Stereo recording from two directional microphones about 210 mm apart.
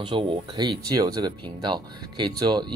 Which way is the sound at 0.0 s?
25° right (ahead or behind).